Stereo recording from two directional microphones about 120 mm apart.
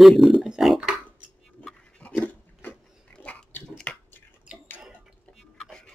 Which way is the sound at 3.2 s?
10° left (ahead or behind).